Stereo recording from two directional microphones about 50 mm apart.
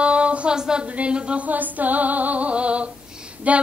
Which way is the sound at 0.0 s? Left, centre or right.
Right.